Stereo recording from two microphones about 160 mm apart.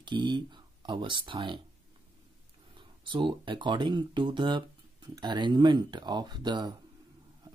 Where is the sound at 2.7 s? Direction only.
30° right (ahead or behind).